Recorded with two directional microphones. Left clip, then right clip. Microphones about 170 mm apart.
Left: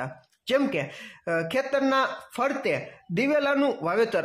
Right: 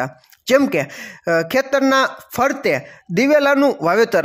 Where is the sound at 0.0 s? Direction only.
35° right (ahead or behind).